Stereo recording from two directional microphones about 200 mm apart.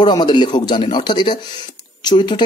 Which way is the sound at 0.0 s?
20° left (ahead or behind).